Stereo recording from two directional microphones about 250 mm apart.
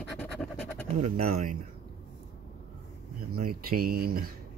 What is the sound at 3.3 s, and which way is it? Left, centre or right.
Speech, right.